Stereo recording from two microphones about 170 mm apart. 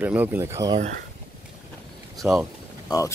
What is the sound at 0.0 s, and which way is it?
Speech, 10° right (ahead or behind).